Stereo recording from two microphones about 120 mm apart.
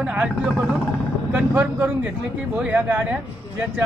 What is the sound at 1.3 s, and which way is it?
Speech, 15° right (ahead or behind).